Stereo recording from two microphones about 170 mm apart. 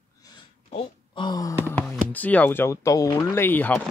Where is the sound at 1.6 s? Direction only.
10° left (ahead or behind).